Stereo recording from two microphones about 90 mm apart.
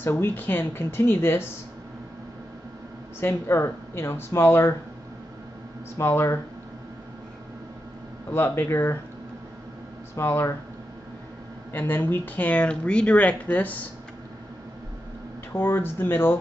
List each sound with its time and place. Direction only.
0.0 s speech: 25° left (ahead or behind)
3.2 s speech: 25° left (ahead or behind)
5.9 s speech: 30° left (ahead or behind)
8.3 s speech: 25° left (ahead or behind)
10.1 s speech: 25° left (ahead or behind)
11.7 s speech: 25° left (ahead or behind)
15.5 s speech: 25° left (ahead or behind)